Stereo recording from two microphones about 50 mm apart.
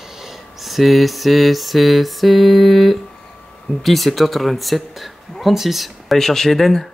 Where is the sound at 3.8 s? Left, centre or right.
Centre.